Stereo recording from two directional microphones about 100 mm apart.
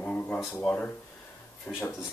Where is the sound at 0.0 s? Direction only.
15° left (ahead or behind).